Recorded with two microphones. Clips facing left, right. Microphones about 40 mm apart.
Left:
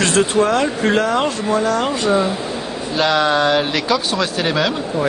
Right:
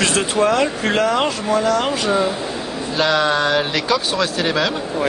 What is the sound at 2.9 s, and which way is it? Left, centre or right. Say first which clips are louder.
Speech: left 1 dB; centre.